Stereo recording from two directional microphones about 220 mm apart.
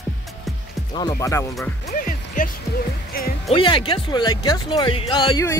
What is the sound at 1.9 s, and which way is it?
Music, 35° left (ahead or behind).